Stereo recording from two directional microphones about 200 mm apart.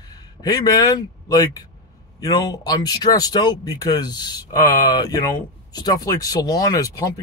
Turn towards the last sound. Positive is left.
turn(degrees=20)  # may be behind; listen again after turning